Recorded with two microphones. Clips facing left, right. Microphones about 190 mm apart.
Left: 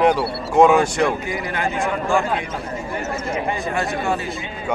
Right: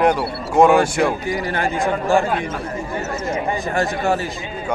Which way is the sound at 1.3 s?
35° right (ahead or behind).